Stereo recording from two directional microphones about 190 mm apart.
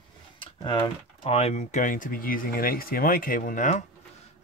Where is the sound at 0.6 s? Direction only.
25° left (ahead or behind).